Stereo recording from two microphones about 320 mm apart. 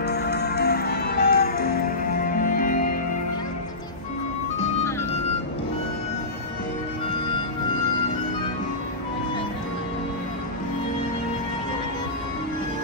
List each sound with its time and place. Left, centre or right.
0.0 s music: left